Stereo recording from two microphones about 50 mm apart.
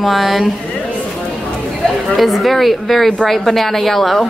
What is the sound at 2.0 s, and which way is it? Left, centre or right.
Speech, centre.